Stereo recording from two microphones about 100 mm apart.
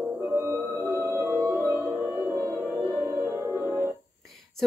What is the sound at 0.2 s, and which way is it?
Music, 25° right (ahead or behind).